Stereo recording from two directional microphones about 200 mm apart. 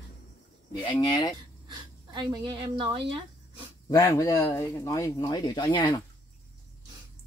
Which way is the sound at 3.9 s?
15° left (ahead or behind).